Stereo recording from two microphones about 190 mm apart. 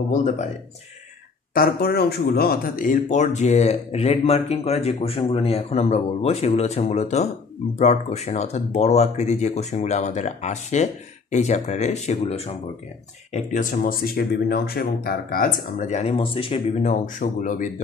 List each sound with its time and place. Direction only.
0.1 s speech: 40° left (ahead or behind)
1.5 s speech: 50° left (ahead or behind)